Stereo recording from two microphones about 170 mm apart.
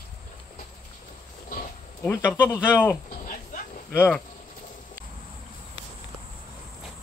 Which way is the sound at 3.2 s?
50° left (ahead or behind).